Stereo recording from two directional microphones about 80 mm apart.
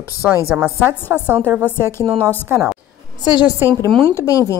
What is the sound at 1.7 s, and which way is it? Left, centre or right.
Speech, left.